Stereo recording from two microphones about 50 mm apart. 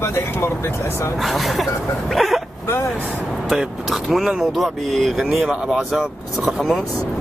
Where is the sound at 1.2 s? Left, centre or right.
Centre.